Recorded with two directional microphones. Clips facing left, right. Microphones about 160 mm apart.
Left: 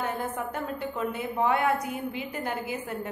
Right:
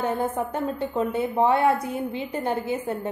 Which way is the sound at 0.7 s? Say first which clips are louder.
Right 5 dB; 30° right (ahead or behind).